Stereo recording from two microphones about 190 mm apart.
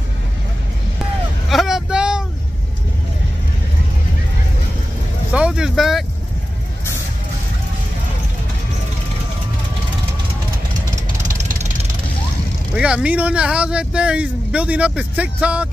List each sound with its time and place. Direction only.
1.5 s vehicle: centre (ahead or behind)
5.3 s vehicle: 5° right (ahead or behind)
12.7 s a man's voice: 5° right (ahead or behind)